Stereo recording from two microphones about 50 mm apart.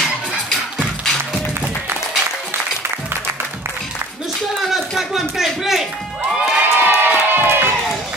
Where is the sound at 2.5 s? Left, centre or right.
Right.